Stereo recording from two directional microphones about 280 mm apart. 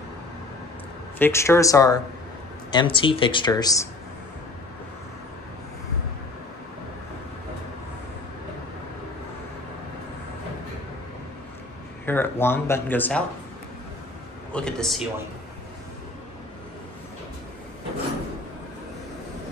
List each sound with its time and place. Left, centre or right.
1.2 s speech: centre
12.1 s speech: centre
14.5 s a man's voice: centre